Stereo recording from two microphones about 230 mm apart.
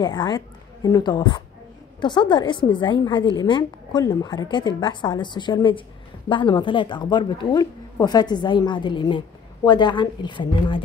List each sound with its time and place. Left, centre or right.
0.0 s a woman's voice: centre